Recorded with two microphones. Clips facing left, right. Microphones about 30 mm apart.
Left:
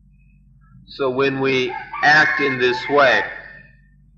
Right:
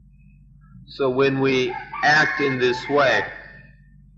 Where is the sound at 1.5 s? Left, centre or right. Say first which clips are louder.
Left 1 dB; centre.